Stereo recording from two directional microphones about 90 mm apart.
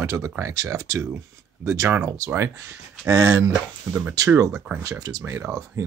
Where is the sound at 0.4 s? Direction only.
30° right (ahead or behind).